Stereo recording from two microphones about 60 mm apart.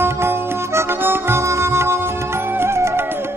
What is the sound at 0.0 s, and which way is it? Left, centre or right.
Music, right.